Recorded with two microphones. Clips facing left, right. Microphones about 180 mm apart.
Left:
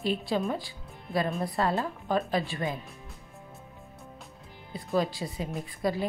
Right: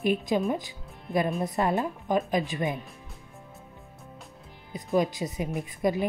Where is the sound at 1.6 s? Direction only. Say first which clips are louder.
Right 2 dB; 20° right (ahead or behind).